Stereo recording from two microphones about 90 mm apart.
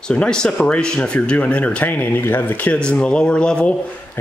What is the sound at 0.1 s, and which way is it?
Speech, 10° left (ahead or behind).